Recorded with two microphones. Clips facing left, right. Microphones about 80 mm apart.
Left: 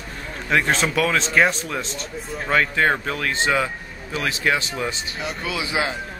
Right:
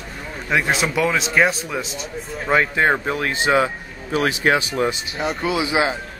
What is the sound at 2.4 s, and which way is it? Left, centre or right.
Speech, centre.